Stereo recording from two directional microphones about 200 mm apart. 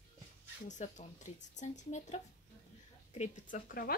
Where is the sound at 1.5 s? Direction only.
35° left (ahead or behind).